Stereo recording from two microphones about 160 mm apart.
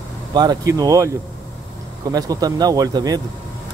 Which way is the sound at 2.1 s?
25° right (ahead or behind).